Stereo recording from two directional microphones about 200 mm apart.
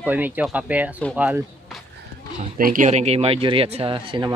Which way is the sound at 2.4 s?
45° right (ahead or behind).